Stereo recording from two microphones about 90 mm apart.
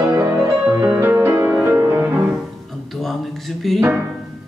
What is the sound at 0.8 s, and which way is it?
Music, 20° right (ahead or behind).